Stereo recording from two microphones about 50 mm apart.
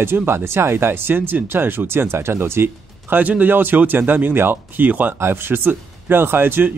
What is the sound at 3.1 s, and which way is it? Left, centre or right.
Speech, right.